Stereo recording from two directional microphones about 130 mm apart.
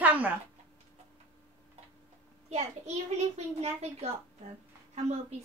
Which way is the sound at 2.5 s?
60° right (ahead or behind).